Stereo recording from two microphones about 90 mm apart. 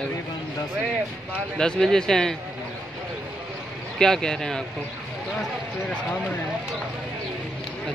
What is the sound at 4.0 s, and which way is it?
Speech, 5° left (ahead or behind).